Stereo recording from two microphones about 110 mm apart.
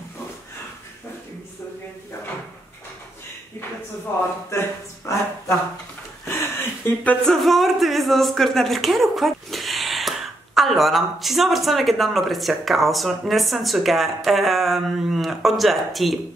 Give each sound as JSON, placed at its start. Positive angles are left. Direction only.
{"t": 4.5, "sound": "speech", "side_deg": 25}
{"t": 6.2, "sound": "a sound", "side_deg": 20}
{"t": 7.2, "sound": "speech", "side_deg": 0}